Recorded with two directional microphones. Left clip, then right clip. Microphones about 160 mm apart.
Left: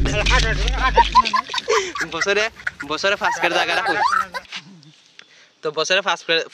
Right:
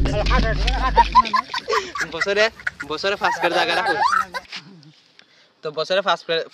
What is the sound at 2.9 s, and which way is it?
Speech, 20° left (ahead or behind).